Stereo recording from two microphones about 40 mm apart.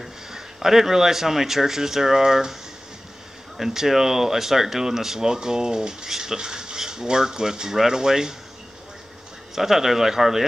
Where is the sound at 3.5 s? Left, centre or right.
Centre.